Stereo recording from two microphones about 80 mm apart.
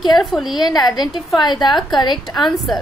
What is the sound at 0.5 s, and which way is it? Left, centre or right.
A woman's voice, left.